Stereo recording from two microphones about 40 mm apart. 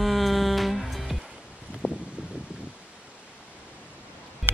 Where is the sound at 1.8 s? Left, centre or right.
Left.